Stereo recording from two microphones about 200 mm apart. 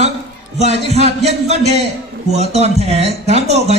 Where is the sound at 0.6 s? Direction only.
35° right (ahead or behind).